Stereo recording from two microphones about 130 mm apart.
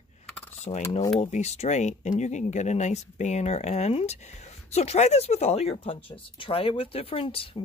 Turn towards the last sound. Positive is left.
turn(degrees=45)  # may be behind; listen again after turning